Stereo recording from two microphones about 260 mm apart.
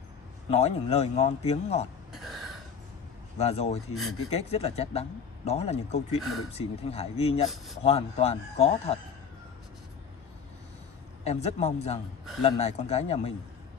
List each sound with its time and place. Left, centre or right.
0.5 s speech: left
2.1 s a sound: centre
3.3 s speech: left
7.4 s speech: centre
7.8 s speech: left
11.2 s speech: left